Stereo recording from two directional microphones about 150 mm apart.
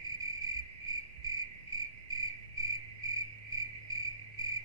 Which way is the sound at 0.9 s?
25° right (ahead or behind).